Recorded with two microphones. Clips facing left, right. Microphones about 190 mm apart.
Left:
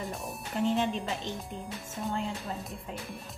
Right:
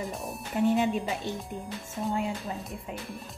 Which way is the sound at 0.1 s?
Centre (ahead or behind).